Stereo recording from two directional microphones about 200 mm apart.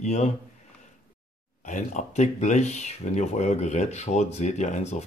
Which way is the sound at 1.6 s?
35° left (ahead or behind).